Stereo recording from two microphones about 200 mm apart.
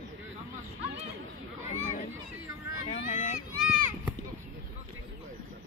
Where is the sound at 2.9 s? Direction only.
35° left (ahead or behind).